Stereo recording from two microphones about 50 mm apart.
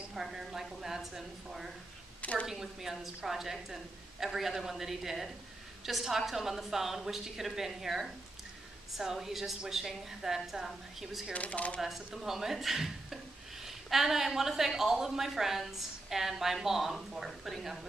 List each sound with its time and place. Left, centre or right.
0.1 s a woman's voice: centre
11.3 s speech: left
11.8 s speech: centre